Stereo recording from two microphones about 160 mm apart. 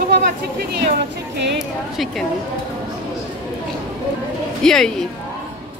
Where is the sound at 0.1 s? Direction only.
80° right.